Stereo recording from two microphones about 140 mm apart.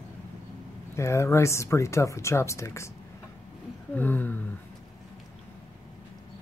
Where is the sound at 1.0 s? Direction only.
20° left (ahead or behind).